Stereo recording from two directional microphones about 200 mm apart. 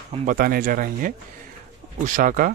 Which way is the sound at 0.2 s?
45° right (ahead or behind).